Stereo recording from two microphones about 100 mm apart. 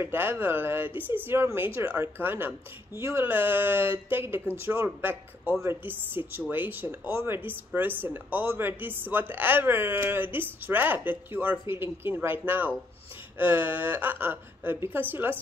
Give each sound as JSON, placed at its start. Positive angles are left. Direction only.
{"t": 0.0, "sound": "speech", "side_deg": -25}